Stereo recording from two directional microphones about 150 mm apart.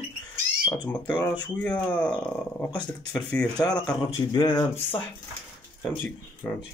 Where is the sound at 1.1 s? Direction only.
10° left (ahead or behind).